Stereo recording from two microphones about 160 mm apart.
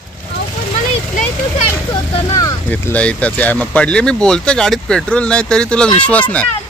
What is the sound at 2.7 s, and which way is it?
Speech, 10° left (ahead or behind).